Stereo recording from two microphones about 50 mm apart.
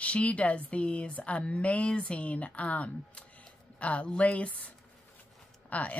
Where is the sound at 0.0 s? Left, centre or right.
Left.